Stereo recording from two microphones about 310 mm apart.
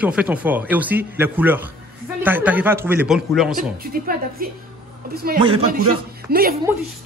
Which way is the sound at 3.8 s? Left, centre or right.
Right.